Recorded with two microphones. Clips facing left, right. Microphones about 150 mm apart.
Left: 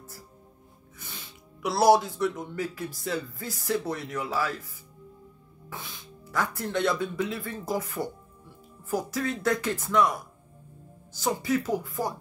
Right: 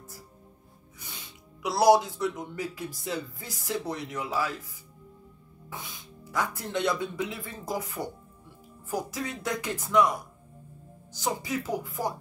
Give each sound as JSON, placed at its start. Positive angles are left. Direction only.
{"t": 1.6, "sound": "speech", "side_deg": -20}
{"t": 5.7, "sound": "speech", "side_deg": -15}
{"t": 11.1, "sound": "speech", "side_deg": -15}